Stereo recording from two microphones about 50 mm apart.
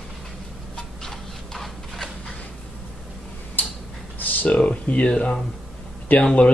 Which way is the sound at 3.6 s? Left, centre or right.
Left.